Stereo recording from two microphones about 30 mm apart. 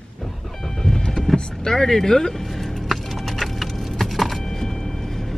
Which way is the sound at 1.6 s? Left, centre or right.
Centre.